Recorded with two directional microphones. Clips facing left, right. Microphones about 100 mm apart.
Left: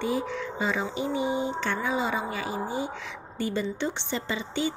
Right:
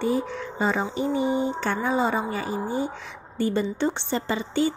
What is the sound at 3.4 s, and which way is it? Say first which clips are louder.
Music: right 5 dB; 40° right (ahead or behind).